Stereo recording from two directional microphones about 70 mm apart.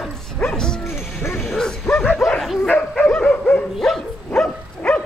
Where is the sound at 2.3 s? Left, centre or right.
Centre.